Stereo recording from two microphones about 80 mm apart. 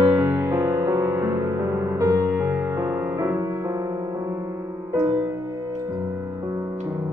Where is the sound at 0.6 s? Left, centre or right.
Right.